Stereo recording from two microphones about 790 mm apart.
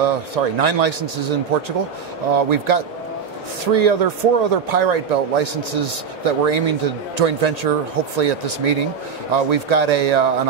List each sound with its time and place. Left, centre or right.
0.0 s speech: right